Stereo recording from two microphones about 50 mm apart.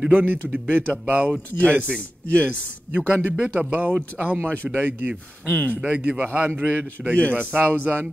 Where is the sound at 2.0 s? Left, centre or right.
Left.